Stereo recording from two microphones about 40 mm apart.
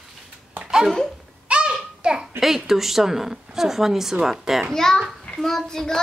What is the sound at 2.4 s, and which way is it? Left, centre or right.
A woman's voice, centre.